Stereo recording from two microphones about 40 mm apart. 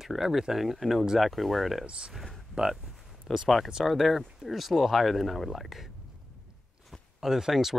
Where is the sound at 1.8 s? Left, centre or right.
Right.